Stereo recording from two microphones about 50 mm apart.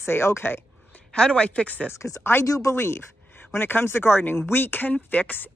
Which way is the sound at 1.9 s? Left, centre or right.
Left.